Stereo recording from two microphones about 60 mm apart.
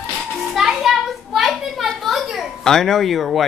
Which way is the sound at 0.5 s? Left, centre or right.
Centre.